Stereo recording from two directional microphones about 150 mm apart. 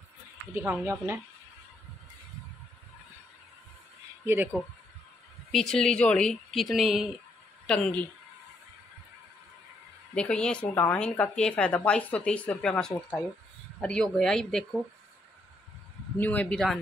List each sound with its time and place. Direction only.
0.6 s speech: 15° right (ahead or behind)
5.5 s a woman's voice: 5° left (ahead or behind)
10.1 s a woman's voice: 5° left (ahead or behind)
16.2 s a woman's voice: 10° left (ahead or behind)